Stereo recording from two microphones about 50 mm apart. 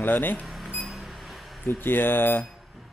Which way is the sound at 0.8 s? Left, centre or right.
Centre.